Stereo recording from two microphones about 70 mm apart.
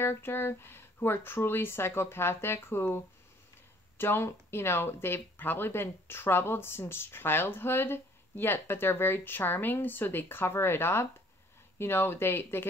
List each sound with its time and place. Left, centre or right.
0.0 s speech: left
4.0 s speech: left